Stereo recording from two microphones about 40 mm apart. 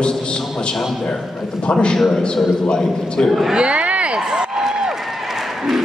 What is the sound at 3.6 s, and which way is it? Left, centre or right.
Speech, right.